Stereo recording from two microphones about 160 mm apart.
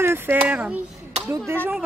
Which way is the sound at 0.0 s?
15° right (ahead or behind).